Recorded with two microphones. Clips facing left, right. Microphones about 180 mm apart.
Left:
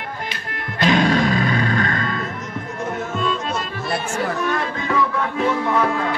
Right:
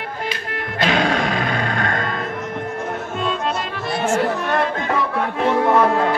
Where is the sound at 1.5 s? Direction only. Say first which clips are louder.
Left 1 dB; 45° right (ahead or behind).